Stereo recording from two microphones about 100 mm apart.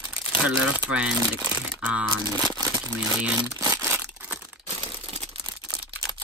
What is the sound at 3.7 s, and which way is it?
Crumpling, 20° right (ahead or behind).